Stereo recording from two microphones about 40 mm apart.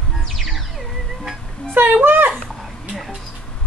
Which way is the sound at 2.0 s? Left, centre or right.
Right.